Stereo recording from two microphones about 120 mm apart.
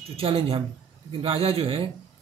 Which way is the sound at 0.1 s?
55° right (ahead or behind).